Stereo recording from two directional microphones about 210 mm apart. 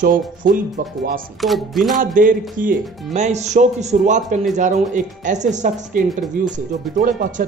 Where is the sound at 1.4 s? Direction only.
Centre (ahead or behind).